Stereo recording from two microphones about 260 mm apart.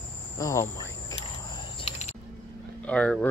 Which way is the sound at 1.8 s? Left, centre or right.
Left.